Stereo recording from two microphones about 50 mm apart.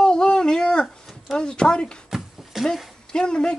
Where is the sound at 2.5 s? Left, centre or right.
Centre.